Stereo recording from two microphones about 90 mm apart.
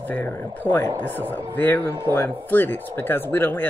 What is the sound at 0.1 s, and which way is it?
Speech, 20° left (ahead or behind).